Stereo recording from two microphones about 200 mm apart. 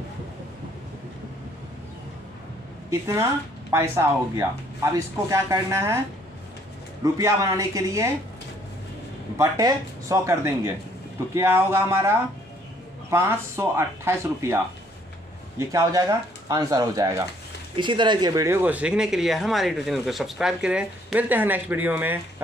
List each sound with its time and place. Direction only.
2.9 s speech: 15° right (ahead or behind)
7.0 s speech: 15° right (ahead or behind)
9.4 s speech: 15° right (ahead or behind)
15.7 s speech: 15° right (ahead or behind)